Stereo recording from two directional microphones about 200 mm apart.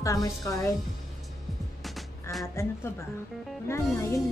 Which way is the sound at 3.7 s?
15° left (ahead or behind).